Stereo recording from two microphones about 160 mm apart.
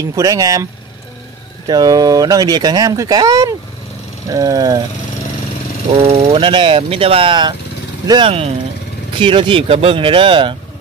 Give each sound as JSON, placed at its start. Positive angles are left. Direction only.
{"t": 0.0, "sound": "speech", "side_deg": -20}
{"t": 1.7, "sound": "speech", "side_deg": -25}
{"t": 6.0, "sound": "speech", "side_deg": -40}